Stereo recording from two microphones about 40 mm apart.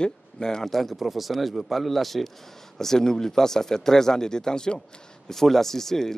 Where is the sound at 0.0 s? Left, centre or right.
Centre.